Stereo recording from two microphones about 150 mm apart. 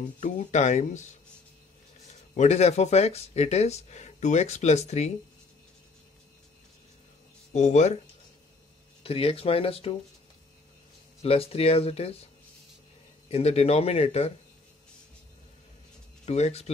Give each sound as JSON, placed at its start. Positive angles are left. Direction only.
{"t": 0.2, "sound": "speech", "side_deg": 50}
{"t": 2.3, "sound": "speech", "side_deg": 50}
{"t": 7.5, "sound": "speech", "side_deg": 50}
{"t": 9.0, "sound": "speech", "side_deg": 40}
{"t": 11.2, "sound": "speech", "side_deg": 40}
{"t": 13.3, "sound": "speech", "side_deg": 45}
{"t": 16.3, "sound": "speech", "side_deg": 50}